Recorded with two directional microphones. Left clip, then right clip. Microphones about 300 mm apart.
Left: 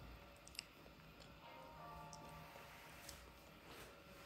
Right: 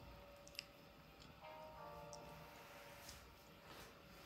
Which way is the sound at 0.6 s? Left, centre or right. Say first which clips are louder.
Even; centre.